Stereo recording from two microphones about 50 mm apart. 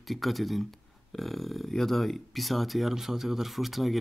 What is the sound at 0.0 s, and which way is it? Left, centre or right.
Speech, centre.